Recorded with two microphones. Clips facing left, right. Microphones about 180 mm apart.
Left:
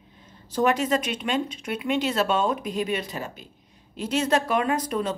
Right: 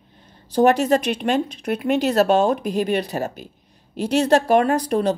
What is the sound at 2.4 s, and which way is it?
Speech, 70° right (ahead or behind).